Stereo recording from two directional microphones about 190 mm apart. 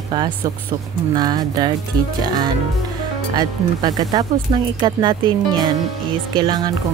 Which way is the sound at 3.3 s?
20° right (ahead or behind).